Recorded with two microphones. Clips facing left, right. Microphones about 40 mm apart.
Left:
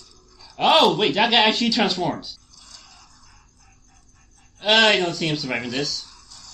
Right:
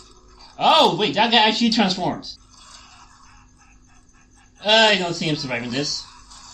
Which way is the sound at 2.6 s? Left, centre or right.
Right.